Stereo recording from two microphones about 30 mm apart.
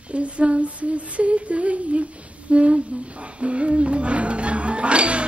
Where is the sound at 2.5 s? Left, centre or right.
Right.